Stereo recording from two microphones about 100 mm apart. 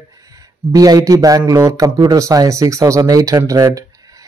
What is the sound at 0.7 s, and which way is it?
Speech, 35° right (ahead or behind).